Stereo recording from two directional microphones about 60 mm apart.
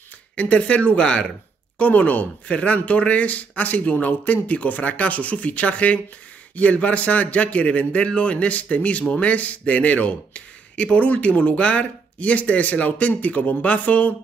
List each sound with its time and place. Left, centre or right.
0.4 s a man's voice: left